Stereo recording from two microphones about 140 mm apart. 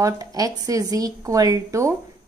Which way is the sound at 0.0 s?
25° right (ahead or behind).